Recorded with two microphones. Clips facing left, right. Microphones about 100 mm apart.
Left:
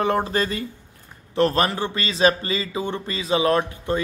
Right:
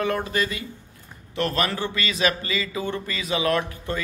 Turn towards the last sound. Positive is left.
turn(degrees=30)  # may be behind; listen again after turning